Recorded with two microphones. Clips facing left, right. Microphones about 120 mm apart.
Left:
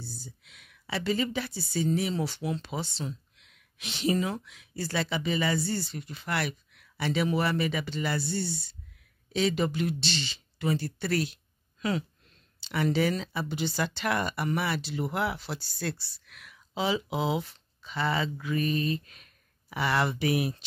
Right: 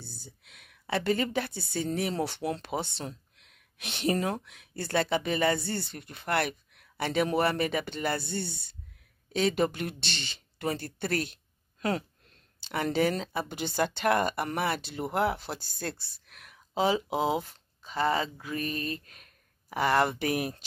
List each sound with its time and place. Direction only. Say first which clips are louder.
0.0 s speech: left 4 dB; 55° right (ahead or behind)